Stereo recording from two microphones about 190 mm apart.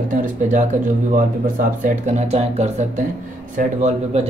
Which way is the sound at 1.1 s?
45° right (ahead or behind).